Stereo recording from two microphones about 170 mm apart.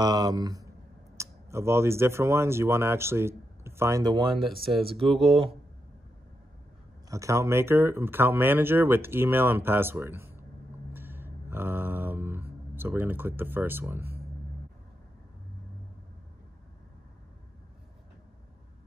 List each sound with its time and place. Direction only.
0.0 s speech: 25° right (ahead or behind)
4.7 s speech: centre (ahead or behind)
7.1 s speech: 20° right (ahead or behind)
10.9 s a sound: 10° right (ahead or behind)